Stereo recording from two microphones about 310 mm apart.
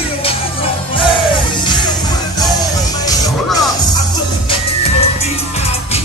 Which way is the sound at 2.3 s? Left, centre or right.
Centre.